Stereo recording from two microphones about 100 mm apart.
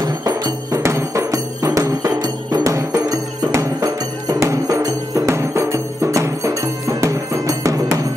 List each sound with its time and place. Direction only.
0.0 s music: 35° right (ahead or behind)